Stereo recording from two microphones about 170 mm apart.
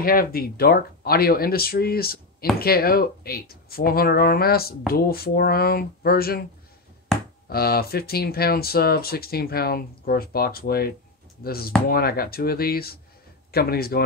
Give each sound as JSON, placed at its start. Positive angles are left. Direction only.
{"t": 0.0, "sound": "speech", "side_deg": 60}
{"t": 7.4, "sound": "speech", "side_deg": 65}